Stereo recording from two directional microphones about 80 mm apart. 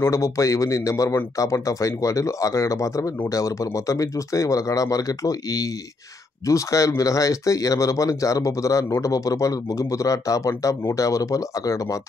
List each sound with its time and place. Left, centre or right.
0.0 s speech: left